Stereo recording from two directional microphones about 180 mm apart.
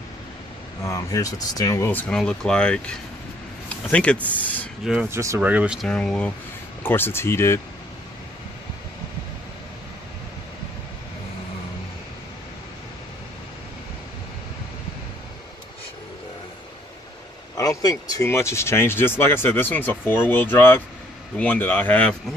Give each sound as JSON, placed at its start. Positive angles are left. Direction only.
{"t": 0.8, "sound": "speech", "side_deg": 15}
{"t": 4.8, "sound": "speech", "side_deg": -5}
{"t": 5.9, "sound": "speech", "side_deg": 5}
{"t": 17.6, "sound": "speech", "side_deg": 20}